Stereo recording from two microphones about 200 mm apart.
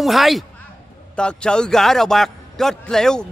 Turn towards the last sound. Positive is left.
turn(degrees=5)  # may be behind; listen again after turning